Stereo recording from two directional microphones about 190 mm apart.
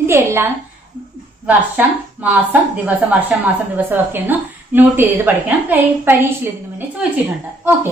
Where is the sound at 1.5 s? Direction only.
10° right (ahead or behind).